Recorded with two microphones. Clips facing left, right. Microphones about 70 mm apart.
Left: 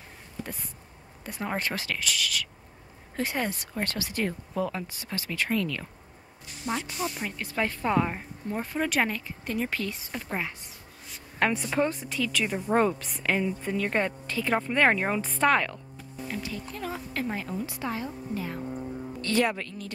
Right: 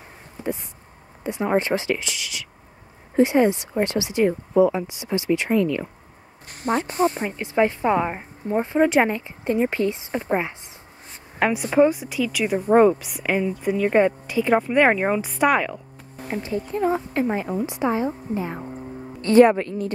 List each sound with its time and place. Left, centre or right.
0.4 s a sound: centre
1.2 s a woman's voice: centre
6.5 s speech: right
7.3 s speech: right
11.3 s a woman's voice: centre
16.3 s speech: right